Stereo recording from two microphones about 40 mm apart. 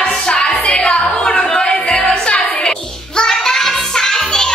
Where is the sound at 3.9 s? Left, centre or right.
Centre.